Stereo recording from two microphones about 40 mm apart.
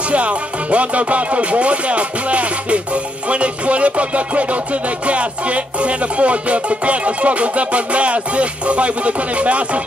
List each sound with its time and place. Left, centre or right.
0.1 s music: right